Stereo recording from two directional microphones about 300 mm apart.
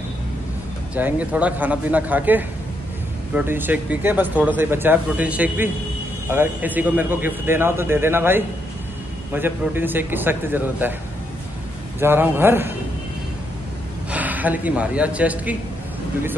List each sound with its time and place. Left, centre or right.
0.9 s a man's voice: centre
12.0 s a man's voice: centre
14.1 s speech: centre